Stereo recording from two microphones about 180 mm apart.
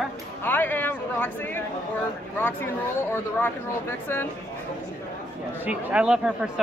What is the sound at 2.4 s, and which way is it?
Speech, 10° left (ahead or behind).